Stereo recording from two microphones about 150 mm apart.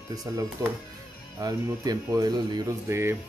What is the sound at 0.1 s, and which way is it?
Speech, 25° right (ahead or behind).